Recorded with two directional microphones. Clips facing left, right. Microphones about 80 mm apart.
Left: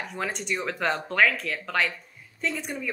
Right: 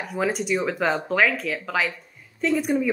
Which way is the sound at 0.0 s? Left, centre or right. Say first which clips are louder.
Right 7 dB; centre.